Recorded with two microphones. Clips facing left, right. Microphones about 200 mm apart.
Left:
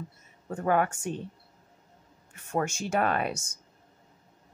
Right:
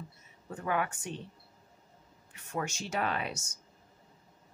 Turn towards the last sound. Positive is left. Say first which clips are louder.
# left 6 dB
turn(degrees=50)  # may be behind; listen again after turning